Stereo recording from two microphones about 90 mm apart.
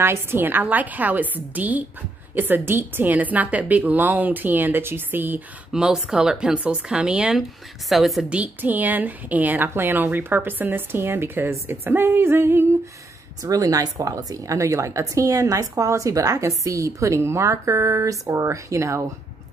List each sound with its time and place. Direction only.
0.0 s a woman's voice: 25° right (ahead or behind)
5.7 s a woman's voice: 5° right (ahead or behind)
8.3 s a woman's voice: 15° right (ahead or behind)
13.4 s speech: 40° right (ahead or behind)